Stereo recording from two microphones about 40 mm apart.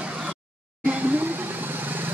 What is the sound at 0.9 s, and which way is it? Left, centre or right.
Vehicle, right.